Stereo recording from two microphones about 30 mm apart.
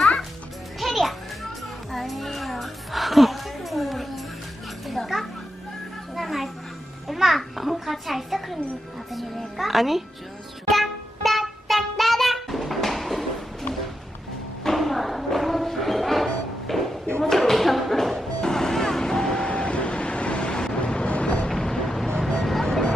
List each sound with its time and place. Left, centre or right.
0.7 s children playing: centre
1.9 s music: centre
4.8 s children playing: centre
7.1 s babbling: centre
9.6 s a child's voice: centre
10.7 s music: centre
14.7 s music: centre
16.6 s a sound: centre
18.4 s vehicle: centre
19.4 s vehicle: left
21.5 s vehicle: centre